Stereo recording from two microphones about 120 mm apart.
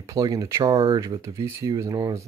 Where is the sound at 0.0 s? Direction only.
30° right (ahead or behind).